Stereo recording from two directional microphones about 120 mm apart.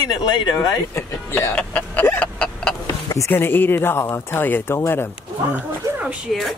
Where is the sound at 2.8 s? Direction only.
25° left (ahead or behind).